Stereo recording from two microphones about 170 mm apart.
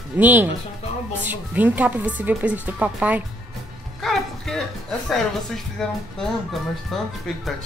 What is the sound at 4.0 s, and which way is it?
Speech, centre (ahead or behind).